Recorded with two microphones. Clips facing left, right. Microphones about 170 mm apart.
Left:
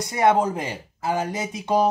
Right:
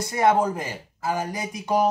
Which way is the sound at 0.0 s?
20° left (ahead or behind).